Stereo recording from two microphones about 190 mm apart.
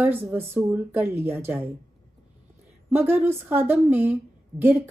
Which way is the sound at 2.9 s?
10° right (ahead or behind).